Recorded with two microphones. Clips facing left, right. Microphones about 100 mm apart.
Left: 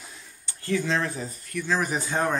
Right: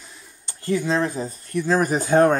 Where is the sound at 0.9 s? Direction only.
25° right (ahead or behind).